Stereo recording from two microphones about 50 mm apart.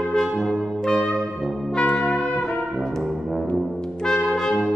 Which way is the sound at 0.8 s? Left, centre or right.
Centre.